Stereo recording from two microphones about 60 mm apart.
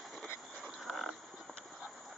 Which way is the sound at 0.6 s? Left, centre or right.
Centre.